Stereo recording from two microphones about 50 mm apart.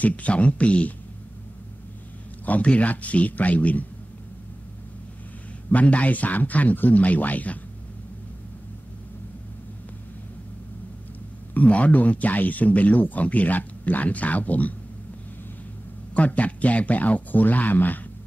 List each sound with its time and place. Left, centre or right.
0.0 s speech: left
2.4 s a man's voice: left
5.7 s speech: left
11.5 s speech: left
16.2 s speech: left